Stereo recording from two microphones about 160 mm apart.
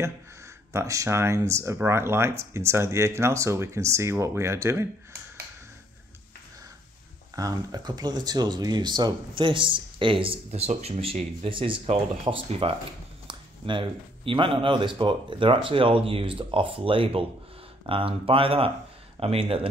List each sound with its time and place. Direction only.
0.7 s speech: 20° right (ahead or behind)
7.3 s speech: 25° right (ahead or behind)